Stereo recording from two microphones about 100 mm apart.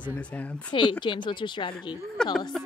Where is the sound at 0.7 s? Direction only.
50° left (ahead or behind).